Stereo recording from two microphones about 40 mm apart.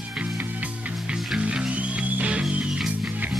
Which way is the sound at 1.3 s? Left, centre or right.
Right.